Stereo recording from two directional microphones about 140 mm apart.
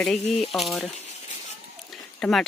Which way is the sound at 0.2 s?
50° left (ahead or behind).